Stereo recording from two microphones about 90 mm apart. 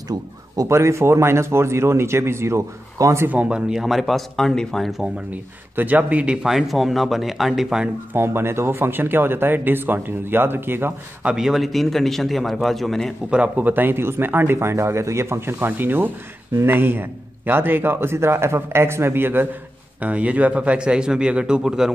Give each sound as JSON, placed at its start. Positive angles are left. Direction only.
{"t": 0.1, "sound": "a man's voice", "side_deg": -50}
{"t": 0.7, "sound": "speech", "side_deg": -30}
{"t": 3.3, "sound": "speech", "side_deg": -15}
{"t": 5.3, "sound": "speech", "side_deg": -20}
{"t": 8.1, "sound": "speech", "side_deg": -25}
{"t": 11.3, "sound": "speech", "side_deg": -5}
{"t": 13.3, "sound": "speech", "side_deg": -15}